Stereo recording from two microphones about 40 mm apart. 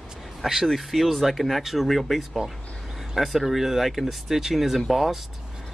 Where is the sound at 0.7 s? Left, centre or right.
Centre.